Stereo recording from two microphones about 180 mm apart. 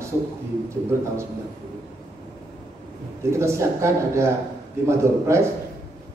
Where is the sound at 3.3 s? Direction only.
15° right (ahead or behind).